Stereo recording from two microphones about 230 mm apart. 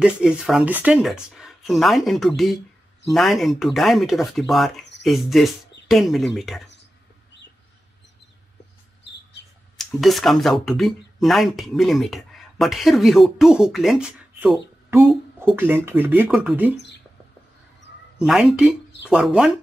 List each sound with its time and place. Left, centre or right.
0.0 s speech: centre
9.8 s speech: centre
18.2 s speech: centre